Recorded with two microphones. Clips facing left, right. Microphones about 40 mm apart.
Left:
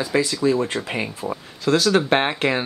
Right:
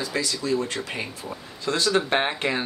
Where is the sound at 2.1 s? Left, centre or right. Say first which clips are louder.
Left 4 dB; left.